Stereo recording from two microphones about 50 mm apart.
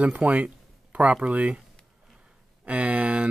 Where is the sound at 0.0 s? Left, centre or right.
Right.